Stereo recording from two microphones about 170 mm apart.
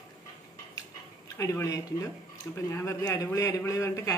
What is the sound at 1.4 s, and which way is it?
Speech, 20° left (ahead or behind).